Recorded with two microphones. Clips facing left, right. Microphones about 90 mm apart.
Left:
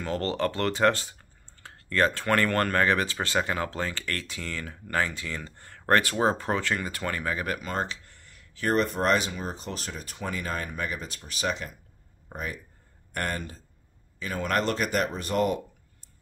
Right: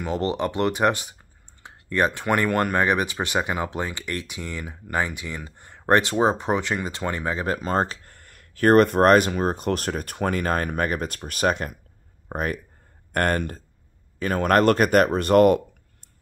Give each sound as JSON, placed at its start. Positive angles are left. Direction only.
{"t": 0.0, "sound": "speech", "side_deg": -15}